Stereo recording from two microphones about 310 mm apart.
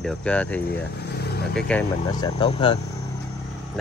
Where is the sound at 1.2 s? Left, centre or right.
Left.